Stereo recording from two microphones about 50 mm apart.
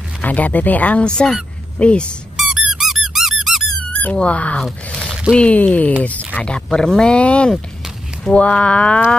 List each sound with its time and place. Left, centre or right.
0.2 s speech: left
1.0 s speech: centre
2.3 s squeak: centre
3.9 s speech: left